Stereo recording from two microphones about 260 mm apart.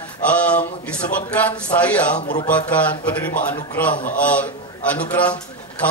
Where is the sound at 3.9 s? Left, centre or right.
Left.